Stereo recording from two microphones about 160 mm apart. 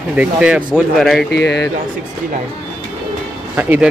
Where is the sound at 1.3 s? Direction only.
90° left.